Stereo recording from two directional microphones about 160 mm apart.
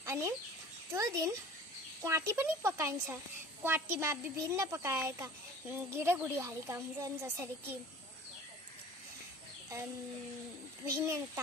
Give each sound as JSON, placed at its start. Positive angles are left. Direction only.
{"t": 0.0, "sound": "chicken", "side_deg": -15}
{"t": 0.9, "sound": "speech", "side_deg": -20}
{"t": 11.0, "sound": "speech", "side_deg": -15}